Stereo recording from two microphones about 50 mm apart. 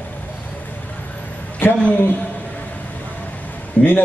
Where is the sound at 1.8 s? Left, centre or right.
Left.